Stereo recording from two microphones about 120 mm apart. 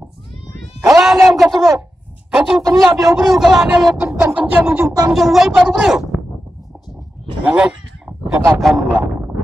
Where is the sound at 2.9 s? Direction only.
30° right (ahead or behind).